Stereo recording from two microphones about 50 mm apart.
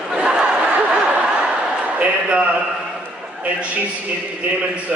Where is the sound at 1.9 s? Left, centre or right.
Right.